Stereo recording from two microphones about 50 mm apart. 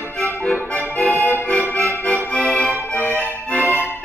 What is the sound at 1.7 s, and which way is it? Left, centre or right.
Music, left.